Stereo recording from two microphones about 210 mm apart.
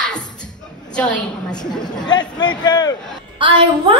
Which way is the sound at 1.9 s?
20° left (ahead or behind).